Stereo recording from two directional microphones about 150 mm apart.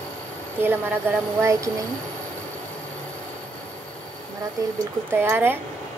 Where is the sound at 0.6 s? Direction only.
15° right (ahead or behind).